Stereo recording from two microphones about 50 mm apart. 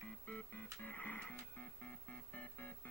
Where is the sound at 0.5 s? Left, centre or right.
Left.